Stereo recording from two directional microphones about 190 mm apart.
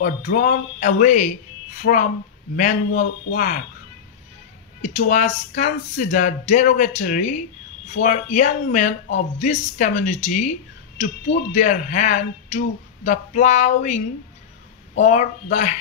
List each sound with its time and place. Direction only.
0.0 s speech: 40° left (ahead or behind)
4.8 s speech: 40° left (ahead or behind)